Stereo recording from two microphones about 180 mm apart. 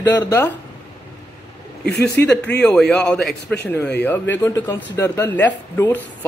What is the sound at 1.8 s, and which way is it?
Speech, 70° left (ahead or behind).